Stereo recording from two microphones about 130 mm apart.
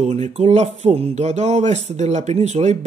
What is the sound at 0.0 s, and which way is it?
Speech, 60° right (ahead or behind).